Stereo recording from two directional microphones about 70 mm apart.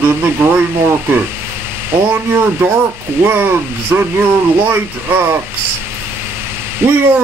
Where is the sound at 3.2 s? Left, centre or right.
Right.